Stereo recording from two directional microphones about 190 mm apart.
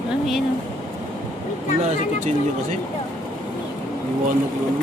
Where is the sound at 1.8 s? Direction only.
35° right (ahead or behind).